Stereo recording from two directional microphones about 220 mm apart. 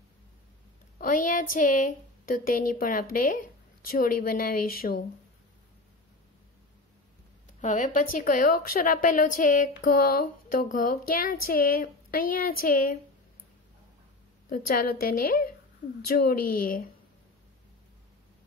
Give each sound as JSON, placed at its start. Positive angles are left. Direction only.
{"t": 0.9, "sound": "a woman's voice", "side_deg": 40}
{"t": 7.6, "sound": "a woman's voice", "side_deg": 35}
{"t": 14.5, "sound": "a woman's voice", "side_deg": 40}